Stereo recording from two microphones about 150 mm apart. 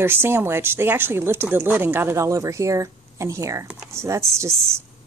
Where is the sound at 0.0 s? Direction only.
15° right (ahead or behind).